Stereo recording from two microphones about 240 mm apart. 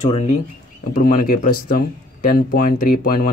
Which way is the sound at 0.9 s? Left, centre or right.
Left.